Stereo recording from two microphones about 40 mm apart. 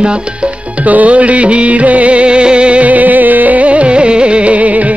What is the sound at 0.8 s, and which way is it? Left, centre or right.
Music, right.